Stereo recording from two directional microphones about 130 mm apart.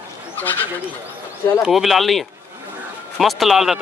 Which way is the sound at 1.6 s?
Centre (ahead or behind).